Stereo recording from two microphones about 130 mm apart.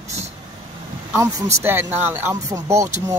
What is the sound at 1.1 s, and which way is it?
Speech, 20° right (ahead or behind).